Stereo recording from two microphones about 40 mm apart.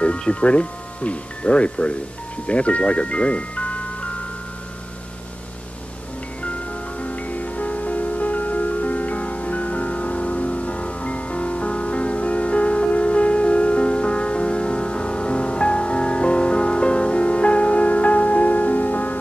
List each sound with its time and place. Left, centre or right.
0.0 s speech: left
6.4 s music: left